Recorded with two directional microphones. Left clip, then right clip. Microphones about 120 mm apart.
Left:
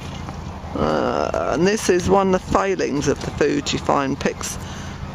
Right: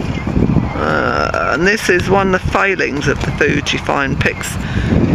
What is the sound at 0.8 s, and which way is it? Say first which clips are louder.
Speech: right 4 dB; 20° left (ahead or behind).